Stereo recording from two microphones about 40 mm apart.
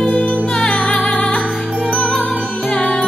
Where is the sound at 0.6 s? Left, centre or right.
Left.